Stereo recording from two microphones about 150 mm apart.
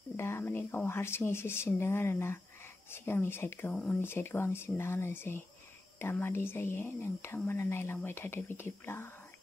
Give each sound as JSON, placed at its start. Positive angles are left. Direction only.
{"t": 0.2, "sound": "speech", "side_deg": 15}
{"t": 3.7, "sound": "speech", "side_deg": 5}
{"t": 4.0, "sound": "speech", "side_deg": 15}